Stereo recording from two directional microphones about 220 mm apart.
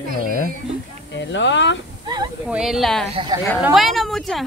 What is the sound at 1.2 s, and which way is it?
Speech, 55° left (ahead or behind).